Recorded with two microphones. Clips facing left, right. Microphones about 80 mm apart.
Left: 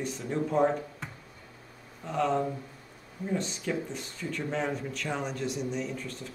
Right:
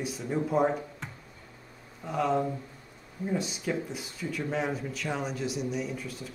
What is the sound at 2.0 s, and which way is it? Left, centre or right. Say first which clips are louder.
Speech: even; centre.